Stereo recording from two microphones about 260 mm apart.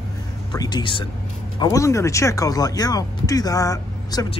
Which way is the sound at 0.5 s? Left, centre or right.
Centre.